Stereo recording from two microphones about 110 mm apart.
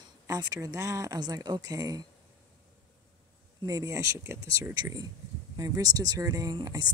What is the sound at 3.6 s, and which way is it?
Speech, 30° right (ahead or behind).